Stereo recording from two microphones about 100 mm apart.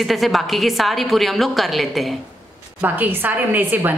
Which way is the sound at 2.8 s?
20° right (ahead or behind).